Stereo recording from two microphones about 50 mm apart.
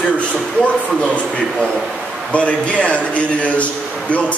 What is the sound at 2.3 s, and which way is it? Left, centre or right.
Speech, left.